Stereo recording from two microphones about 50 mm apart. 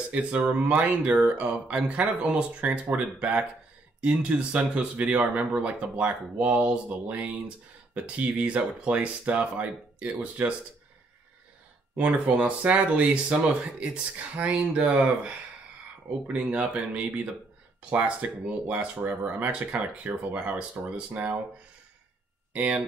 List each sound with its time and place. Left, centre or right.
0.1 s speech: right
11.9 s speech: right
21.1 s speech: right
22.5 s speech: right